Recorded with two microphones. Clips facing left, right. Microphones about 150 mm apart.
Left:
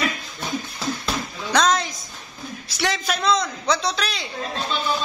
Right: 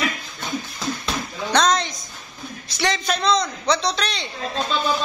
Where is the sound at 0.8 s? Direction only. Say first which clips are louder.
Even; 5° left (ahead or behind).